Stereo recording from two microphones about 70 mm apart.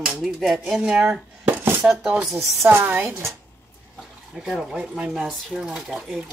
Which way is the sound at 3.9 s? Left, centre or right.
Centre.